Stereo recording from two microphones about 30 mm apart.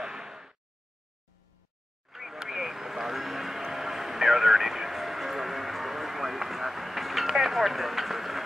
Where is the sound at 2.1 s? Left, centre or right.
Centre.